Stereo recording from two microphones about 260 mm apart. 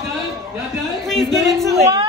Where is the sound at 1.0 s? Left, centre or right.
Centre.